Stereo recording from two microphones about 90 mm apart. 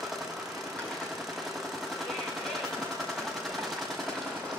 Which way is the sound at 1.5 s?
Centre (ahead or behind).